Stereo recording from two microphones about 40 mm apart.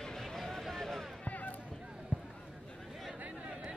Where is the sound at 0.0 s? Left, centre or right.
Centre.